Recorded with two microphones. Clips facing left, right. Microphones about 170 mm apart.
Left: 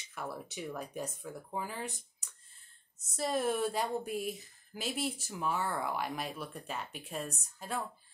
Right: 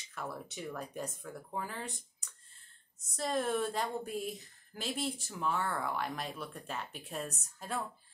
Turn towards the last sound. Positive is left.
turn(degrees=0)  # may be behind; listen again after turning